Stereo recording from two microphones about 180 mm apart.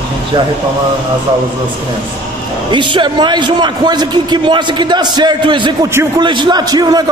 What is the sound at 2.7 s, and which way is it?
A man's voice, 25° right (ahead or behind).